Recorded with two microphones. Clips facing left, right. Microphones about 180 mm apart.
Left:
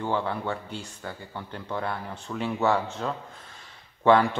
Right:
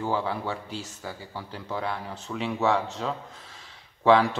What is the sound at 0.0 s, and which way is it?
Speech, 5° right (ahead or behind).